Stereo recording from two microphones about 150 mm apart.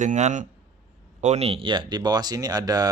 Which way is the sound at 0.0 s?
55° right (ahead or behind).